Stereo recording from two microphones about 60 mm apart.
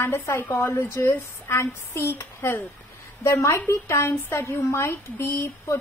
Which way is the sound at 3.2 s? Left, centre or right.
Left.